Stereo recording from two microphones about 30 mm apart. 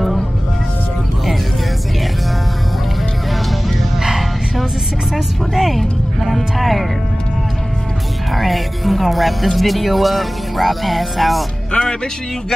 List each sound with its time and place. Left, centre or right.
5.1 s music: centre
8.3 s speech: centre
11.7 s speech: left